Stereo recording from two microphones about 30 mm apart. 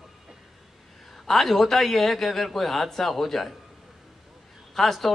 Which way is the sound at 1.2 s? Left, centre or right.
Centre.